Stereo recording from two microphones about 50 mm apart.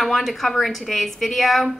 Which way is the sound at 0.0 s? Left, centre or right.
Centre.